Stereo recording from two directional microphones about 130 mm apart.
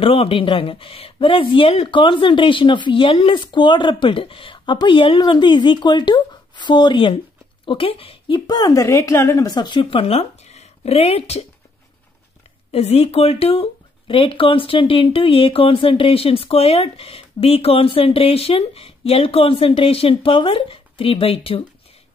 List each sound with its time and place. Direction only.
0.0 s speech: 45° left (ahead or behind)
8.5 s speech: 30° left (ahead or behind); by 11.4 s 50° left (ahead or behind)
12.7 s speech: 50° left (ahead or behind)